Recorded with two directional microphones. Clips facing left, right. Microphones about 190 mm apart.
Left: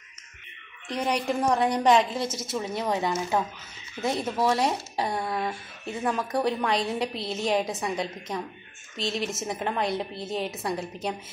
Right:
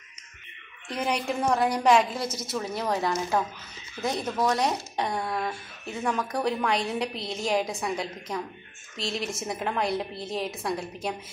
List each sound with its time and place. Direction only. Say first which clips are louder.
0.8 s a woman's voice: left 1 dB; 5° right (ahead or behind)
2.2 s a woman's voice: left 1 dB; 25° left (ahead or behind)
2.5 s a woman's voice: even; 5° left (ahead or behind)